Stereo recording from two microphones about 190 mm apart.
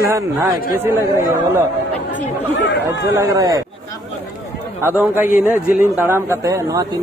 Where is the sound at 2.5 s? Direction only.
65° left (ahead or behind).